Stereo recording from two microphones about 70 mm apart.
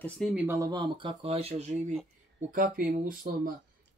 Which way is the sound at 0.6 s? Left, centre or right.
Right.